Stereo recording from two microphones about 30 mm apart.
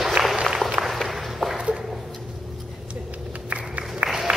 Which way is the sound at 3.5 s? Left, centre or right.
Right.